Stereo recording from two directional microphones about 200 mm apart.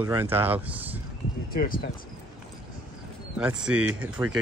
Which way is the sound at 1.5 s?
45° left (ahead or behind).